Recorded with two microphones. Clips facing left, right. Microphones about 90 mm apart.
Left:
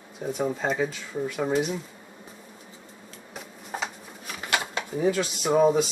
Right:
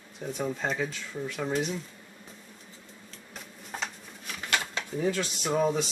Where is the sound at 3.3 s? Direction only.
5° left (ahead or behind).